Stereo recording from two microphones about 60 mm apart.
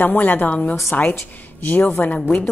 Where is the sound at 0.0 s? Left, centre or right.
Left.